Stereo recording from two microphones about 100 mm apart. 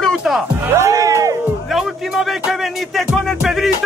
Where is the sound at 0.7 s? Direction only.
30° right (ahead or behind).